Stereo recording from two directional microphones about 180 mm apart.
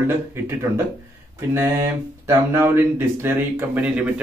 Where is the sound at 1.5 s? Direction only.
15° right (ahead or behind).